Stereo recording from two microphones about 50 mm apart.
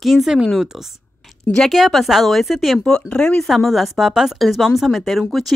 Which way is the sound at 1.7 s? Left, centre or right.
Centre.